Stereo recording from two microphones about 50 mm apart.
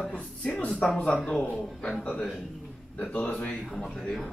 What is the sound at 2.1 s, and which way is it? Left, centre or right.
Speech, centre.